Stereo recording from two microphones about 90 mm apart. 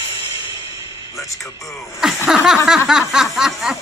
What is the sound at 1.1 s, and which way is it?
Music, 35° left (ahead or behind).